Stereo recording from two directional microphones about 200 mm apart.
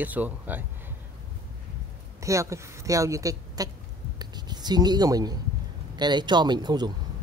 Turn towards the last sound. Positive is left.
turn(degrees=-20)  # may be behind; listen again after turning